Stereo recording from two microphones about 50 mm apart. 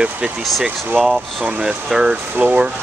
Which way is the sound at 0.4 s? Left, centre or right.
Centre.